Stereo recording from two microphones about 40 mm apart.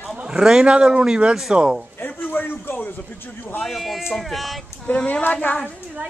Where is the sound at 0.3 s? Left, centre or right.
Centre.